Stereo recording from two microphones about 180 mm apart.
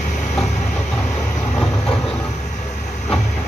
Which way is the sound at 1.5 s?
5° left (ahead or behind).